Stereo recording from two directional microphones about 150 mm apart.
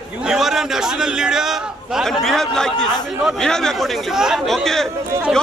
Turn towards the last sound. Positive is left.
turn(degrees=0)  # may be behind; listen again after turning